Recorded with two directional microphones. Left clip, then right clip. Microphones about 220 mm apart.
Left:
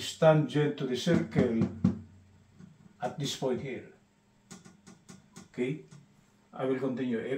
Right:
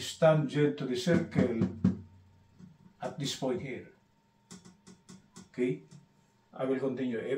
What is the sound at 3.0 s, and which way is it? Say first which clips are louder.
Speech: left 2 dB; 15° left (ahead or behind).